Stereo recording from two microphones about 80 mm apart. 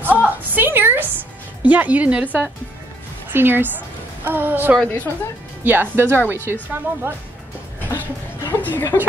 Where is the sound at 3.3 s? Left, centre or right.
Right.